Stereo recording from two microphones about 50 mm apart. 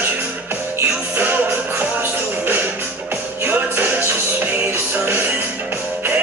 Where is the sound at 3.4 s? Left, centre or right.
Right.